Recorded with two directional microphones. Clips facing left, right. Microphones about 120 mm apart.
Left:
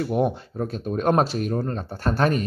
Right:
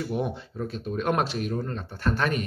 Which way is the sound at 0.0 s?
50° left (ahead or behind).